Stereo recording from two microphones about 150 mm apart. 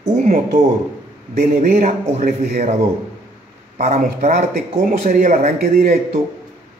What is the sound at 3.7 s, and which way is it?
A man's voice, 50° right (ahead or behind).